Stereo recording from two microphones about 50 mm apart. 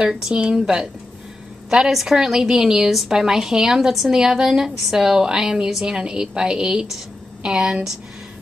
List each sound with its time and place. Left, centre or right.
0.1 s a woman's voice: centre